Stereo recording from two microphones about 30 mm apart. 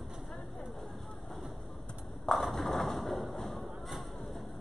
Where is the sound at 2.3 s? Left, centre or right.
Centre.